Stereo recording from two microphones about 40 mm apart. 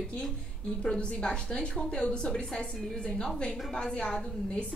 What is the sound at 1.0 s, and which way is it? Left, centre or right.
A woman's voice, left.